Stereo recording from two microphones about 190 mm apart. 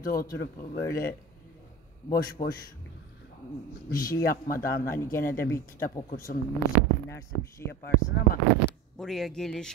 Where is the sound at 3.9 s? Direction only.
50° left (ahead or behind).